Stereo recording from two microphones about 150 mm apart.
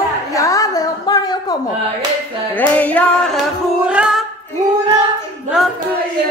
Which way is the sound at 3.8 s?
5° right (ahead or behind).